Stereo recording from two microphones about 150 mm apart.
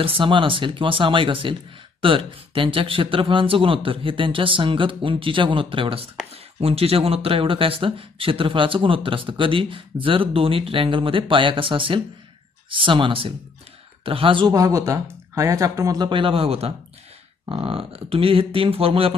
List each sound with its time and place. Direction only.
0.0 s speech: 35° right (ahead or behind)